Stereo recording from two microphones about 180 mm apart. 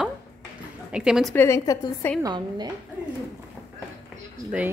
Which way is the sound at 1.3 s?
15° left (ahead or behind).